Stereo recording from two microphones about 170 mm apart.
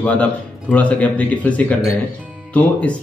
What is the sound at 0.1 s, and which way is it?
A man's voice, 10° left (ahead or behind).